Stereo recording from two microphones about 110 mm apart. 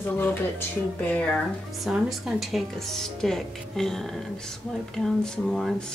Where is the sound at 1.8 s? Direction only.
5° right (ahead or behind).